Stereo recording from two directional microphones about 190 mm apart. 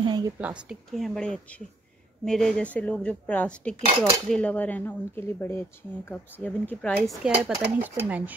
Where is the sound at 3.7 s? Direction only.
35° right (ahead or behind).